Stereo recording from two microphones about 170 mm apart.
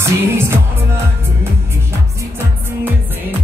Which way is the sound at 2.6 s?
10° right (ahead or behind).